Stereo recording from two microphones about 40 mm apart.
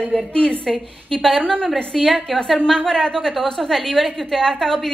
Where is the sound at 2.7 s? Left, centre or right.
Centre.